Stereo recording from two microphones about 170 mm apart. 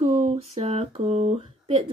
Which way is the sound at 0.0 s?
40° right (ahead or behind).